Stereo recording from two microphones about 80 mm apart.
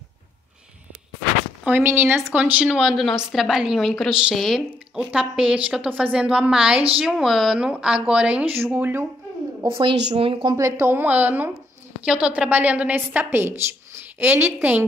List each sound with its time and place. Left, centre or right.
1.6 s a woman's voice: right
2.3 s a woman's voice: centre
5.1 s a woman's voice: centre
8.5 s a woman's voice: right
9.7 s speech: right
10.5 s a woman's voice: right
11.0 s a woman's voice: right